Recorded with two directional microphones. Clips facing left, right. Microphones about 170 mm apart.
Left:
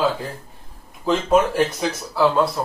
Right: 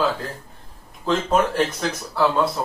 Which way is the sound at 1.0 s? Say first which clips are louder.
Left 2 dB; 5° left (ahead or behind).